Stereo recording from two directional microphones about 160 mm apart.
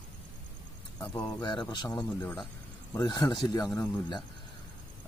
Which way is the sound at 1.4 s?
25° left (ahead or behind).